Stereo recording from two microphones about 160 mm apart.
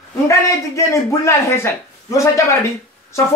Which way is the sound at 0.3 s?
20° left (ahead or behind).